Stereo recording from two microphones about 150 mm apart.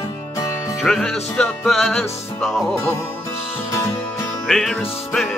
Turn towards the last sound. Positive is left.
turn(degrees=0)  # may be behind; listen again after turning